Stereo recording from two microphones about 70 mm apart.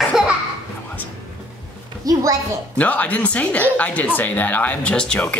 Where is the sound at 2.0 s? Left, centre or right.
Right.